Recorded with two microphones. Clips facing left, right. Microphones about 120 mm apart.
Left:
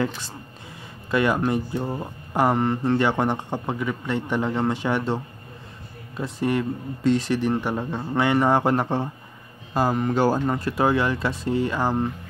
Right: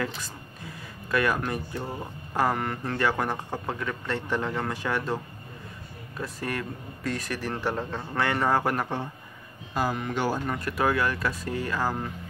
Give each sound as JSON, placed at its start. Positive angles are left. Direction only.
{"t": 1.1, "sound": "a man's voice", "side_deg": 20}
{"t": 3.7, "sound": "a man's voice", "side_deg": 15}
{"t": 10.4, "sound": "a man's voice", "side_deg": 30}